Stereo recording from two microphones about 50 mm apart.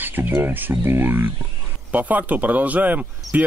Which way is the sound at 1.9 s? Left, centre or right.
Right.